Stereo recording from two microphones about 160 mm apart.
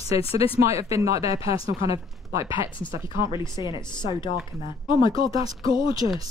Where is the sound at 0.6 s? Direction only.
20° right (ahead or behind).